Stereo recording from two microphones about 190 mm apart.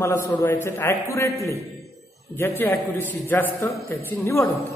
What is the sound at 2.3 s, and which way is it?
A man's voice, 10° left (ahead or behind).